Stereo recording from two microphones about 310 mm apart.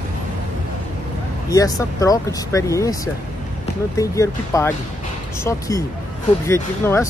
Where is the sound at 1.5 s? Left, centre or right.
Centre.